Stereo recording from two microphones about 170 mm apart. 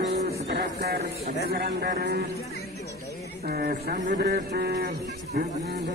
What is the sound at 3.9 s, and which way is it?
Speech, 50° right (ahead or behind).